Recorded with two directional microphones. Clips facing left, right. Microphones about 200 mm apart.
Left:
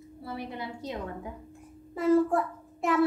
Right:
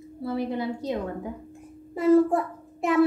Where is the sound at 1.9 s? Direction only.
20° right (ahead or behind).